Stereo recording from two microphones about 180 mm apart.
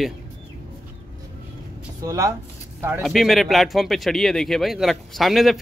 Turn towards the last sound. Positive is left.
turn(degrees=0)  # may be behind; listen again after turning